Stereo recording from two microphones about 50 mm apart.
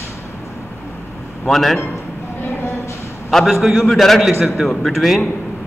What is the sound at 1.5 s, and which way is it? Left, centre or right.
Speech, centre.